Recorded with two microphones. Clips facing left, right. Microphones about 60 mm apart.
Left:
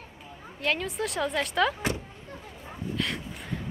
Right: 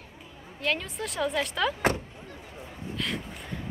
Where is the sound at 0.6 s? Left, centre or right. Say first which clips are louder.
Left 2 dB; centre.